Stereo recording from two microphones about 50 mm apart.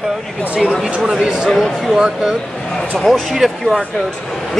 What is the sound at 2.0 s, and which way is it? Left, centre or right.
Speech, centre.